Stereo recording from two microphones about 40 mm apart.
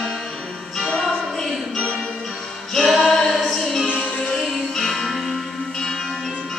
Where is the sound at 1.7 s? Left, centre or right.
Left.